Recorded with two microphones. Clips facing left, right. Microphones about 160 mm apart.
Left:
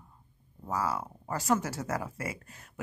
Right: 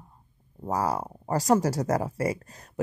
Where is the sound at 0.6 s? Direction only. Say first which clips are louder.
Right 5 dB; 40° right (ahead or behind).